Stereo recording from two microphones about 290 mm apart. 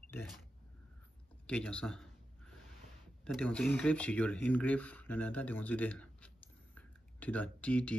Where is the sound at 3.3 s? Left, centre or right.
Centre.